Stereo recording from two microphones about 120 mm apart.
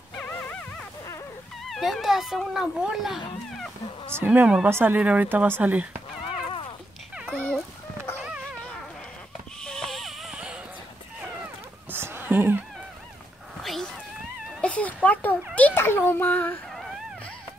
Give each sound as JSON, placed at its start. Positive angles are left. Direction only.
{"t": 0.2, "sound": "dog", "side_deg": 10}
{"t": 1.6, "sound": "speech", "side_deg": 0}
{"t": 4.1, "sound": "speech", "side_deg": -15}
{"t": 6.2, "sound": "horse", "side_deg": 45}
{"t": 7.2, "sound": "dog", "side_deg": 5}
{"t": 9.6, "sound": "a sound", "side_deg": 5}
{"t": 11.9, "sound": "a sound", "side_deg": -20}
{"t": 13.6, "sound": "cat", "side_deg": 0}
{"t": 15.5, "sound": "a sound", "side_deg": 15}